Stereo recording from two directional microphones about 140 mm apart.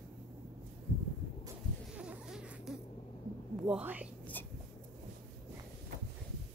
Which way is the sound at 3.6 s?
10° right (ahead or behind).